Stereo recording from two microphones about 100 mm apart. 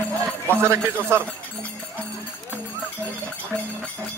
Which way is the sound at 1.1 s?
25° right (ahead or behind).